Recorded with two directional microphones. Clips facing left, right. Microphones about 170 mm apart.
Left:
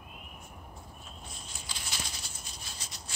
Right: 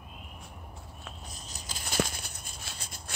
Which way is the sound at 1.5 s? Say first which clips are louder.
Right 5 dB; 45° right (ahead or behind).